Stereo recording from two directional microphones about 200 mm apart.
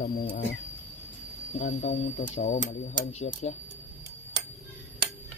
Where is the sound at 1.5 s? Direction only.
35° left (ahead or behind).